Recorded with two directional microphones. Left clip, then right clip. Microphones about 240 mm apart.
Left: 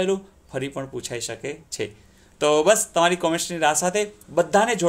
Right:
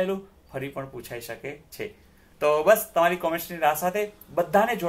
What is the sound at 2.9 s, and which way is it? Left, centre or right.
Speech, left.